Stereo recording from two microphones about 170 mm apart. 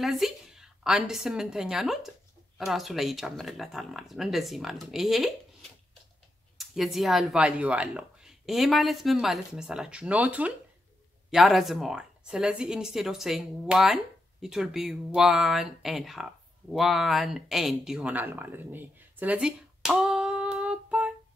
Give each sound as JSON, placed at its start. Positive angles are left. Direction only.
{"t": 0.0, "sound": "a woman's voice", "side_deg": 0}